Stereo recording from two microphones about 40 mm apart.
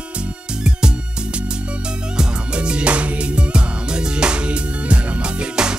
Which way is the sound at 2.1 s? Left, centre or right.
Right.